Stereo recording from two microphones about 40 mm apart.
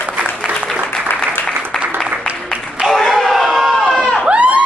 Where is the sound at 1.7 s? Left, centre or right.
Centre.